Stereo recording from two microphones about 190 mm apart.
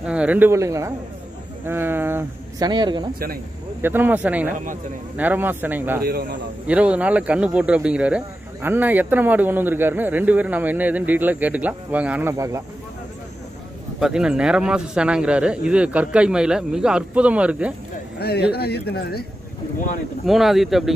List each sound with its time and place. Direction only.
0.0 s a man's voice: 5° right (ahead or behind)
2.7 s speech: 25° right (ahead or behind)
3.8 s a man's voice: 10° right (ahead or behind)
13.9 s speech: 5° right (ahead or behind)
18.2 s speech: 55° left (ahead or behind)
20.2 s speech: centre (ahead or behind)